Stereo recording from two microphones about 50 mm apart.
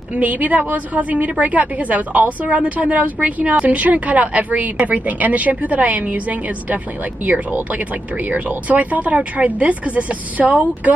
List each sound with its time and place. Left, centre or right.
0.1 s a woman's voice: right